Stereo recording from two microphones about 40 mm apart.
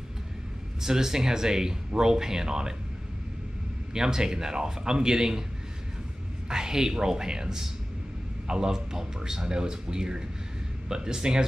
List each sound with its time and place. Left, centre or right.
0.8 s speech: centre
3.9 s speech: centre
6.5 s speech: centre